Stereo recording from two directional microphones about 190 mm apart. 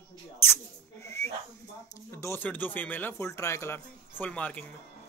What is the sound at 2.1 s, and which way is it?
Speech, 15° left (ahead or behind).